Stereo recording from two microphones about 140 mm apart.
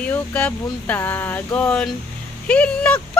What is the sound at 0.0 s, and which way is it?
Speech, 10° left (ahead or behind).